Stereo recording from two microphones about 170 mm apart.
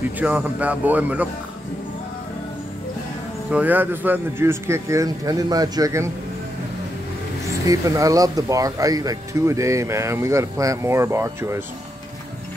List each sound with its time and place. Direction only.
0.2 s speech: 10° right (ahead or behind)
3.4 s speech: 10° right (ahead or behind)
7.6 s speech: 20° right (ahead or behind)